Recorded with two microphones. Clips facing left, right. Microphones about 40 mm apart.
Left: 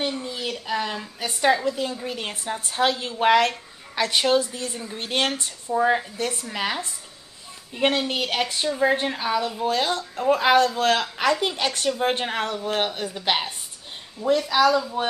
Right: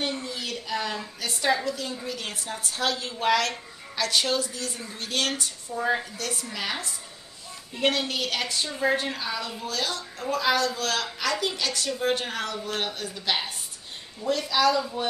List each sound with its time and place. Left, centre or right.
0.0 s a woman's voice: left
14.5 s speech: centre